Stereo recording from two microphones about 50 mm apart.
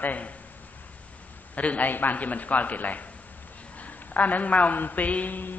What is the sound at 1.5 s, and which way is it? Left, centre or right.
A man's voice, left.